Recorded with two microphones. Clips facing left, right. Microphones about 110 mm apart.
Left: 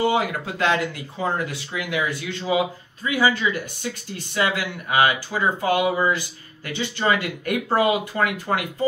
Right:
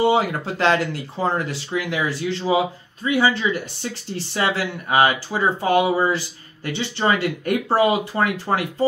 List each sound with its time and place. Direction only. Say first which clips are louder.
0.0 s speech: right 3 dB; 30° right (ahead or behind)